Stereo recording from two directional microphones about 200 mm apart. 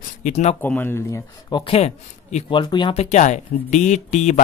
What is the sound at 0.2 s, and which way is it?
Speech, 35° left (ahead or behind).